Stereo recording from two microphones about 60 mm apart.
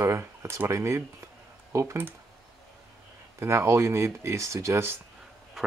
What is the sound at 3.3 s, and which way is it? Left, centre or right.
Speech, right.